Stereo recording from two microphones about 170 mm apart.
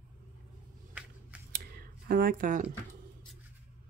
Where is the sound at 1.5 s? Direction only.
60° right (ahead or behind).